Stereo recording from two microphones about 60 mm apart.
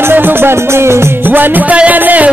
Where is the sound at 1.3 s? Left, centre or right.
Right.